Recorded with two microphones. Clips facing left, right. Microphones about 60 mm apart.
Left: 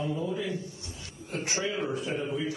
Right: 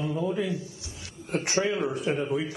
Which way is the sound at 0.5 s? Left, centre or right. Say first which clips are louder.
Right 2 dB; right.